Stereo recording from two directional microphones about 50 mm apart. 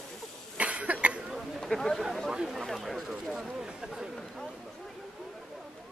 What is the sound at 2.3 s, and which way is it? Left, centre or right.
Speech, centre.